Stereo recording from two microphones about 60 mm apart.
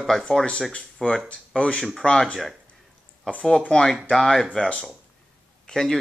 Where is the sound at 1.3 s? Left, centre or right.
Centre.